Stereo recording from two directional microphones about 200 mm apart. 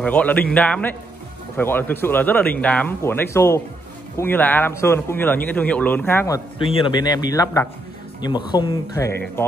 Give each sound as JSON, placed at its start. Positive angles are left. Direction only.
{"t": 0.0, "sound": "speech", "side_deg": 10}
{"t": 6.6, "sound": "a man's voice", "side_deg": 25}